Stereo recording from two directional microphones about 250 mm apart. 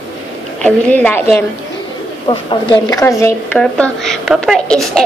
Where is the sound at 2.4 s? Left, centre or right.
Centre.